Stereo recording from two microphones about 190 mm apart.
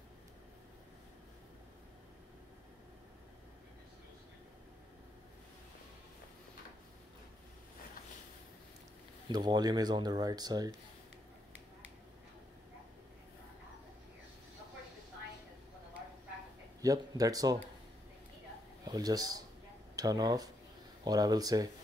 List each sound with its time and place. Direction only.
9.3 s speech: 20° right (ahead or behind)
16.8 s speech: 20° right (ahead or behind)
18.9 s speech: 20° right (ahead or behind)